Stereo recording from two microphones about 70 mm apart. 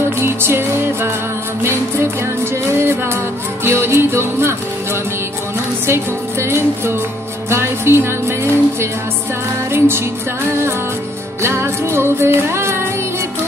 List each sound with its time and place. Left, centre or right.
0.2 s music: right
6.4 s music: right
11.4 s music: right